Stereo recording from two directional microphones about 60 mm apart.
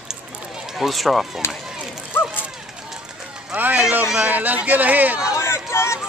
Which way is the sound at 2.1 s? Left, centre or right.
Left.